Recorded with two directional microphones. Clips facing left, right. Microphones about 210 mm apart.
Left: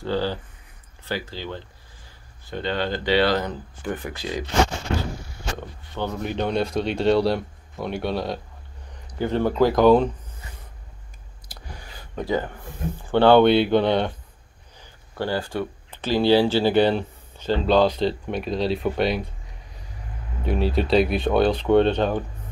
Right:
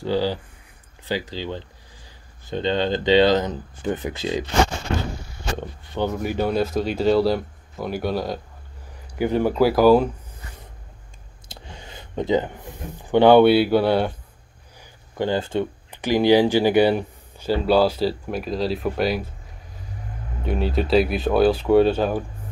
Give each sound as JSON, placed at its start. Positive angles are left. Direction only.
{"t": 0.0, "sound": "speech", "side_deg": -10}
{"t": 5.6, "sound": "speech", "side_deg": -15}
{"t": 9.2, "sound": "speech", "side_deg": -10}
{"t": 11.4, "sound": "speech", "side_deg": -25}
{"t": 14.8, "sound": "speech", "side_deg": -20}